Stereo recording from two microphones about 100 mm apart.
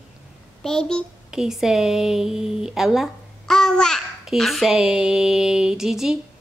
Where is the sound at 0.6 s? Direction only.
5° left (ahead or behind).